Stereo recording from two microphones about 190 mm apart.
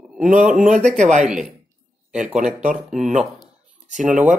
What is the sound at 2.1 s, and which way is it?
Speech, 5° right (ahead or behind).